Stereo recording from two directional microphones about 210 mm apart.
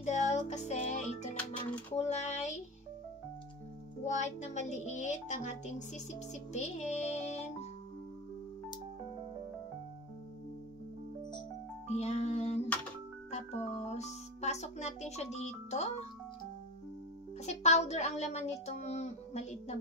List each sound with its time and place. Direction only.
0.0 s music: 35° left (ahead or behind)
2.0 s a sound: 35° left (ahead or behind)
4.0 s a child's voice: 35° left (ahead or behind)
11.9 s music: 30° left (ahead or behind)
13.3 s a child's voice: 30° left (ahead or behind)
17.5 s a child's voice: 30° left (ahead or behind)